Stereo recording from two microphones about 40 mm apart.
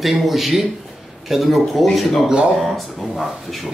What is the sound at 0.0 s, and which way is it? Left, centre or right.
Speech, centre.